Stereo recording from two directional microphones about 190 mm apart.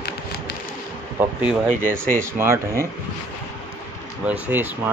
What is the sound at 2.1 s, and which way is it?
Speech, 15° right (ahead or behind).